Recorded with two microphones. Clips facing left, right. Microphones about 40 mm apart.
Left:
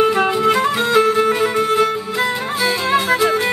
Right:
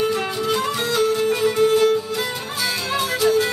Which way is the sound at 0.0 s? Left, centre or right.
Left.